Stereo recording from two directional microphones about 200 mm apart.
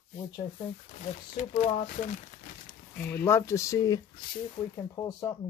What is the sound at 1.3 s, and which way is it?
Speech, 35° left (ahead or behind).